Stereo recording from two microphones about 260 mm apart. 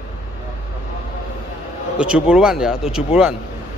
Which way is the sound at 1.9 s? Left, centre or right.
Centre.